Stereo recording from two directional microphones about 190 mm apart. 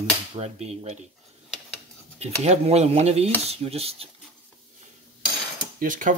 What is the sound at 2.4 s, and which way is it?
Speech, 35° right (ahead or behind).